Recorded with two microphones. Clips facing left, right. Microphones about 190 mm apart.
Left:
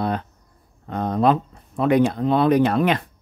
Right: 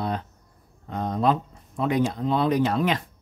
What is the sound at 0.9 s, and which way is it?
Speech, 65° left (ahead or behind).